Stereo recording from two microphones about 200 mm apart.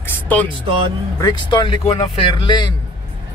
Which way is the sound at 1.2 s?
20° left (ahead or behind).